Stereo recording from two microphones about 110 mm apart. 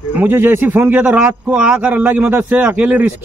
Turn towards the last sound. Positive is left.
turn(degrees=-15)  # may be behind; listen again after turning